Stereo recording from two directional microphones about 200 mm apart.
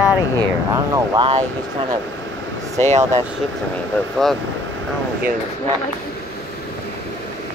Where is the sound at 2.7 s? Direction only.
35° right (ahead or behind).